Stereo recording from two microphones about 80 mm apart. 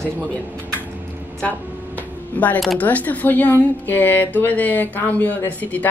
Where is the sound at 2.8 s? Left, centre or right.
Centre.